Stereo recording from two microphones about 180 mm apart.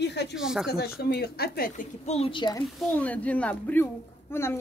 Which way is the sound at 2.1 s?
30° left (ahead or behind).